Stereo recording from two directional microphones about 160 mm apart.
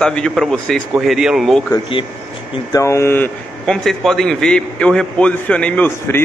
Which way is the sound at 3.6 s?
Centre (ahead or behind).